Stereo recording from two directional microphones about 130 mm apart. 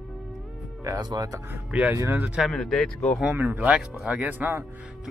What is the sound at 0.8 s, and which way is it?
Speech, 30° right (ahead or behind).